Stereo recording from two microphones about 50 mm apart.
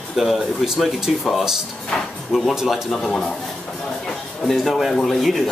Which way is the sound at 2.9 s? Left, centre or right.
Centre.